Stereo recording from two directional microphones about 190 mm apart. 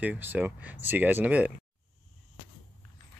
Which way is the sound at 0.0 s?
10° right (ahead or behind).